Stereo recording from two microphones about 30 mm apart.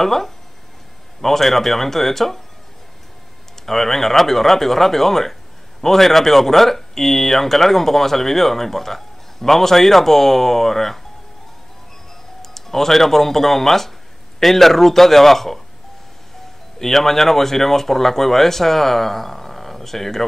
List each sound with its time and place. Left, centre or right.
0.0 s speech: centre
3.6 s speech: centre
12.4 s speech: centre
16.7 s speech: centre